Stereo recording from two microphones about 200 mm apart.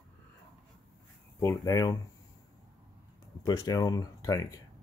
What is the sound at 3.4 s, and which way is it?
Speech, 20° left (ahead or behind).